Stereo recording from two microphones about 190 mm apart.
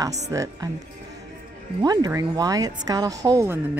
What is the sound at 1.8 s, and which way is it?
Speech, 20° right (ahead or behind).